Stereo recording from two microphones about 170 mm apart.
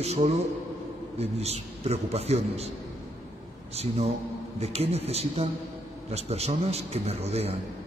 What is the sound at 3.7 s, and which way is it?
A man's voice, 40° right (ahead or behind).